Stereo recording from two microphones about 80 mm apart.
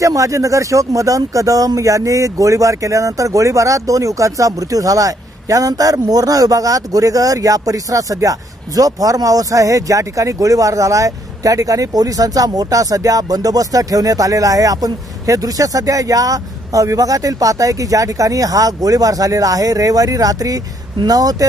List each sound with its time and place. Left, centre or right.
0.0 s speech: right